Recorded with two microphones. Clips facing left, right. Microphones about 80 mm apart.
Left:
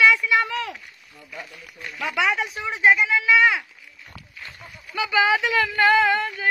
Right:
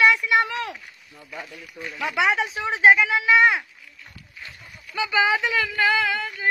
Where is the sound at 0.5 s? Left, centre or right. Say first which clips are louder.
Left 1 dB; right.